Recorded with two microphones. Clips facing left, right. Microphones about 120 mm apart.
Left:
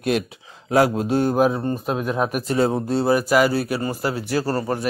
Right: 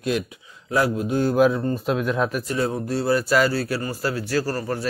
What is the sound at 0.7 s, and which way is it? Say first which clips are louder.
Speech: left 4 dB; 90° left.